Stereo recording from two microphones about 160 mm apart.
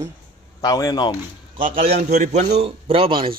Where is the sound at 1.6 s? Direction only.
60° right (ahead or behind).